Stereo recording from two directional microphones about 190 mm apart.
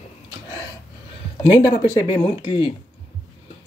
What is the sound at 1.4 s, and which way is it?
Speech, 25° left (ahead or behind).